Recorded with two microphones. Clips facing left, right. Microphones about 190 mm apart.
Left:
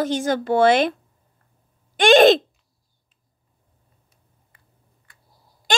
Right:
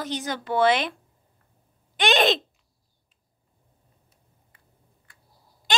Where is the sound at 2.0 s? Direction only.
45° left (ahead or behind).